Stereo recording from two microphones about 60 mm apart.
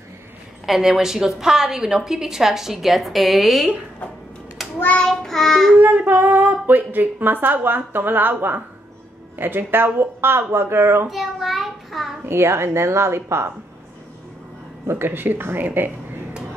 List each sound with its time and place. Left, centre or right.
0.7 s a woman's voice: centre
4.6 s a sound: centre
5.0 s child singing: centre
5.8 s speech: right
11.1 s child singing: centre
12.3 s speech: right
14.9 s speech: right